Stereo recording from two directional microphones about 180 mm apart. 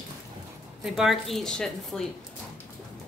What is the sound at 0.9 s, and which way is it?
A woman's voice, centre (ahead or behind).